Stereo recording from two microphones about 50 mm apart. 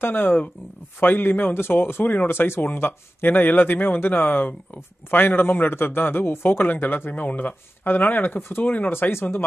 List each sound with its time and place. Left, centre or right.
0.0 s a man's voice: left